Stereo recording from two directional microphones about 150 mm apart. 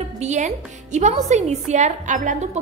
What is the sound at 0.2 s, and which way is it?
A woman's voice, 50° right (ahead or behind).